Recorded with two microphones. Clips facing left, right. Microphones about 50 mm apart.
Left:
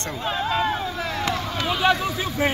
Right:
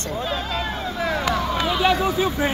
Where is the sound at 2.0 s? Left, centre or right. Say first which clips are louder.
Right 5 dB; centre.